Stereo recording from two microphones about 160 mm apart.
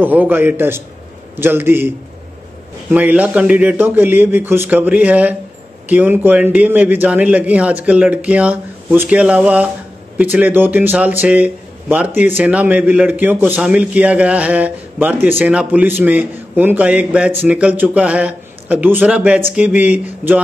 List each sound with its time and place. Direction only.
0.0 s a man's voice: 10° right (ahead or behind)
2.9 s a man's voice: 10° right (ahead or behind)